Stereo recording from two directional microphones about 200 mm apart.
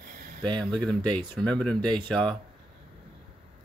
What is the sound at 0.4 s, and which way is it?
Speech, 25° right (ahead or behind).